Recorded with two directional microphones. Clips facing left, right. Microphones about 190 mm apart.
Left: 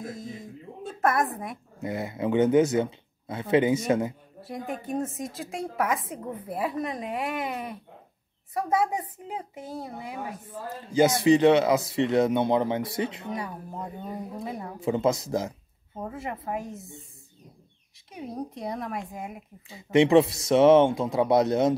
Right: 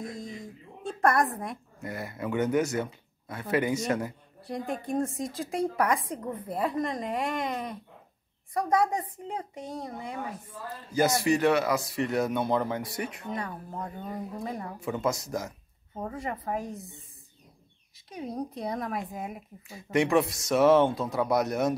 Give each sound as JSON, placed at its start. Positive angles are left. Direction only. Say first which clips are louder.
{"t": 0.0, "sound": "a sound", "louder": "left 1 dB", "side_deg": 0}
{"t": 1.8, "sound": "speech", "louder": "left 7 dB", "side_deg": 20}
{"t": 4.4, "sound": "a woman's voice", "louder": "right 1 dB", "side_deg": 5}
{"t": 11.2, "sound": "speech", "louder": "left 8 dB", "side_deg": 20}
{"t": 13.3, "sound": "a woman's voice", "louder": "left 1 dB", "side_deg": 10}
{"t": 15.2, "sound": "speech", "louder": "left 5 dB", "side_deg": 25}
{"t": 16.0, "sound": "a woman's voice", "louder": "even", "side_deg": 5}
{"t": 18.1, "sound": "a woman's voice", "louder": "right 1 dB", "side_deg": 0}
{"t": 19.8, "sound": "speech", "louder": "left 6 dB", "side_deg": 25}